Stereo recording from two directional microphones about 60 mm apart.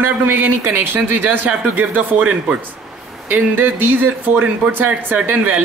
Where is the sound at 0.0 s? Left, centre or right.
Right.